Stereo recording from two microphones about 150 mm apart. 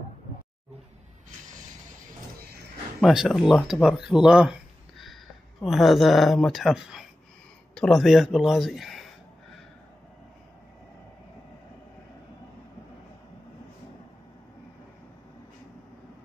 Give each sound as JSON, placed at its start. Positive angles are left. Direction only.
{"t": 3.0, "sound": "speech", "side_deg": 0}